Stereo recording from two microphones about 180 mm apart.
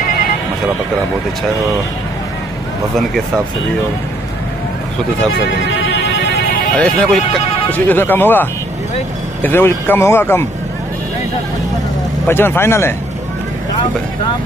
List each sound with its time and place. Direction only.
5.9 s music: 75° left (ahead or behind)
6.8 s speech: 5° left (ahead or behind)
12.3 s speech: 15° left (ahead or behind)